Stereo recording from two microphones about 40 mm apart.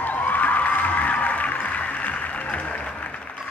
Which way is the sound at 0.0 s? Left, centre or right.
Left.